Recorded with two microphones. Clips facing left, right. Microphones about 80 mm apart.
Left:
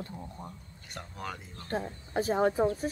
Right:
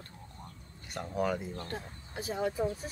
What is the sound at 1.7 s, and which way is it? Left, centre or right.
Speech, left.